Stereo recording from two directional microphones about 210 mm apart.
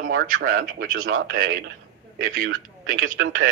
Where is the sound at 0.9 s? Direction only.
75° right (ahead or behind).